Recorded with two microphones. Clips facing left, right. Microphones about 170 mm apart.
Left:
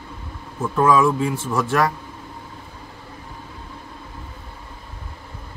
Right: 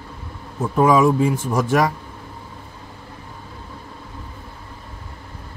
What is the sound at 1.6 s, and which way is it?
Speech, 20° right (ahead or behind).